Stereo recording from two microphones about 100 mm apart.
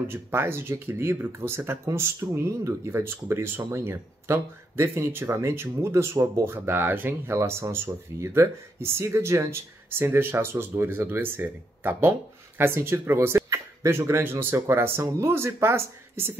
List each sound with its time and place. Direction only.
0.1 s speech: 25° right (ahead or behind)